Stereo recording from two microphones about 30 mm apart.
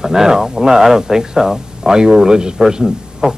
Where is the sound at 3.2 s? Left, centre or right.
Right.